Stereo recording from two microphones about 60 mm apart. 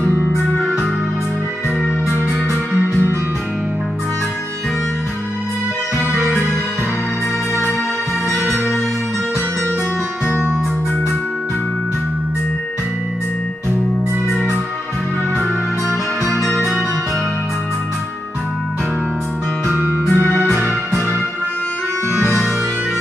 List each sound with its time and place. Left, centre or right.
2.9 s music: left
20.1 s music: left
20.3 s music: centre